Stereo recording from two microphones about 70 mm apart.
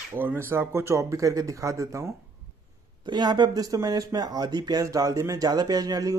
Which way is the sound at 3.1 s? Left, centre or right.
Right.